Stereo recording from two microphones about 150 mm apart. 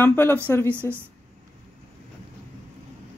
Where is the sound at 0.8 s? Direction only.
15° right (ahead or behind).